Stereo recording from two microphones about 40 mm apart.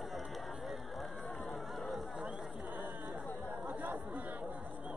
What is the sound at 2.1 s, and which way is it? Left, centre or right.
Chatter, centre.